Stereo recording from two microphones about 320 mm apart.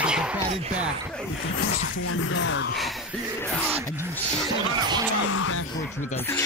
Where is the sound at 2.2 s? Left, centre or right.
Left.